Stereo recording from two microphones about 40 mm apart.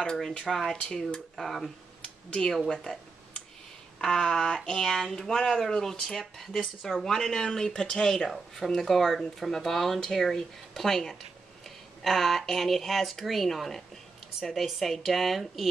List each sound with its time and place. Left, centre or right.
0.0 s speech: centre
4.0 s speech: centre